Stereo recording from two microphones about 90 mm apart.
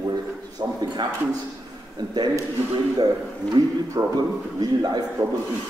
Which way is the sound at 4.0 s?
40° right (ahead or behind).